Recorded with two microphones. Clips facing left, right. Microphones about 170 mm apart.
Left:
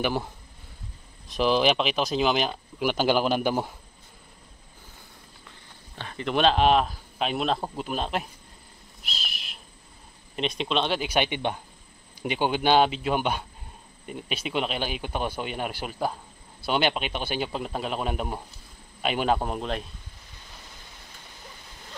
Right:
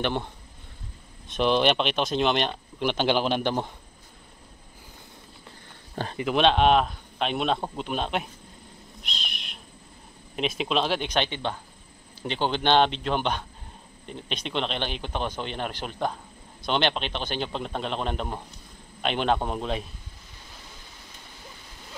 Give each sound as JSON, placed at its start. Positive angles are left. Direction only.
{"t": 0.0, "sound": "speech", "side_deg": 5}
{"t": 6.1, "sound": "speech", "side_deg": 0}
{"t": 9.0, "sound": "a sound", "side_deg": 5}
{"t": 10.3, "sound": "speech", "side_deg": 0}